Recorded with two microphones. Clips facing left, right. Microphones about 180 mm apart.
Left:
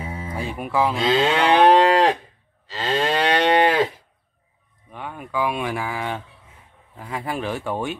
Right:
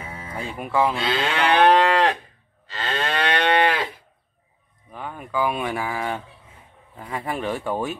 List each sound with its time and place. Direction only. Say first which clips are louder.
0.0 s speech: left 3 dB; 10° left (ahead or behind)
0.9 s moo: left 5 dB; 25° left (ahead or behind)
4.9 s speech: even; centre (ahead or behind)